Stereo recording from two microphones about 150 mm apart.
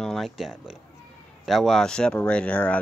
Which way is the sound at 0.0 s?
Centre (ahead or behind).